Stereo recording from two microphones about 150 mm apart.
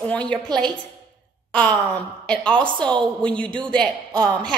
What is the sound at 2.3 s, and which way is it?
A woman's voice, 5° left (ahead or behind).